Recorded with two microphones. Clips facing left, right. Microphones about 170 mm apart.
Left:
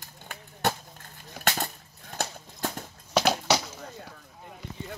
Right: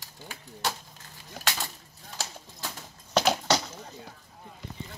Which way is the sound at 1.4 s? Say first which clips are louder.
Left 4 dB; 50° left (ahead or behind).